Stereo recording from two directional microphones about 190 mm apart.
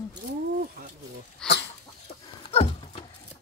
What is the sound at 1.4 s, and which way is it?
Chicken, 5° left (ahead or behind).